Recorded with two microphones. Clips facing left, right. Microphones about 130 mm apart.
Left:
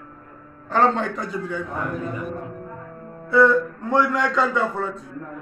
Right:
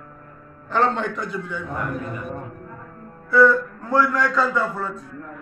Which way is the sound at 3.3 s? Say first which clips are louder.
Even; 20° left (ahead or behind).